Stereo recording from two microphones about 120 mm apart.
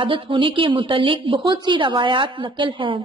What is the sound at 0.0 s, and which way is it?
A woman's voice, 45° right (ahead or behind).